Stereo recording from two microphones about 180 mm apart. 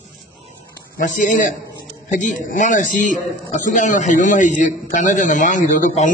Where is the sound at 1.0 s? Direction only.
45° left (ahead or behind).